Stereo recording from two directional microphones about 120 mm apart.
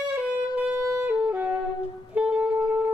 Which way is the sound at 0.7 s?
20° right (ahead or behind).